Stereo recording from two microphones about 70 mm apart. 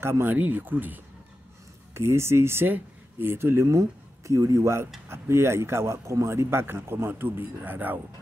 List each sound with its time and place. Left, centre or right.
0.0 s speech: right
2.0 s speech: right